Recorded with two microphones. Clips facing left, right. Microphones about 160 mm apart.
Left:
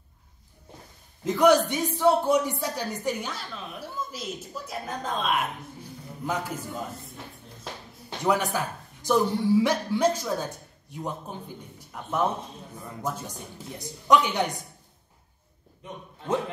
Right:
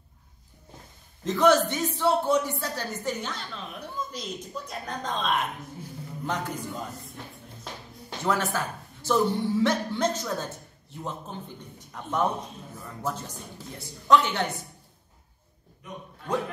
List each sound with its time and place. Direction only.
1.2 s a man's voice: 10° left (ahead or behind)
8.2 s a man's voice: 15° left (ahead or behind)
16.2 s a man's voice: 25° left (ahead or behind)